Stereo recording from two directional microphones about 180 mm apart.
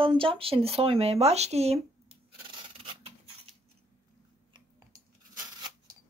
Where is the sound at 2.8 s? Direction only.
30° right (ahead or behind).